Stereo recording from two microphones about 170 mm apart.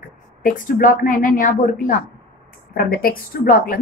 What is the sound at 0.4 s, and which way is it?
A woman's voice, 55° left (ahead or behind).